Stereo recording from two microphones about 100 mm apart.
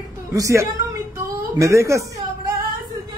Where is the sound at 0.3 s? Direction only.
30° right (ahead or behind).